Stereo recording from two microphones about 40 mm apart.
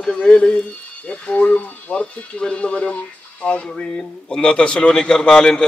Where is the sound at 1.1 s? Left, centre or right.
Left.